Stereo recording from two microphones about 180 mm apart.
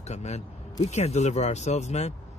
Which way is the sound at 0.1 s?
40° left (ahead or behind).